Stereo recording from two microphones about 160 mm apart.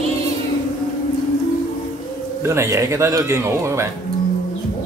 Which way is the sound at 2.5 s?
15° right (ahead or behind).